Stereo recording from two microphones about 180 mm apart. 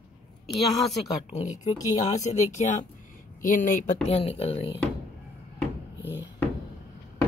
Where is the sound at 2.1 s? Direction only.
40° left (ahead or behind).